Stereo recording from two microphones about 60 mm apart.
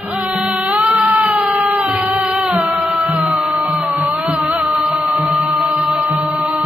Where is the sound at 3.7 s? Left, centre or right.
Centre.